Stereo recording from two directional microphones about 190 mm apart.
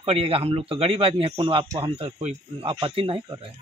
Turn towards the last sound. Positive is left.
turn(degrees=-25)  # may be behind; listen again after turning